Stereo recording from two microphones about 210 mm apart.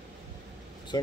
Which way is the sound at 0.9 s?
20° left (ahead or behind).